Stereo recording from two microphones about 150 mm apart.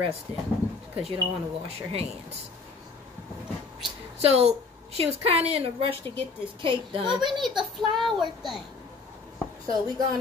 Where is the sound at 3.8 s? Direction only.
40° right (ahead or behind).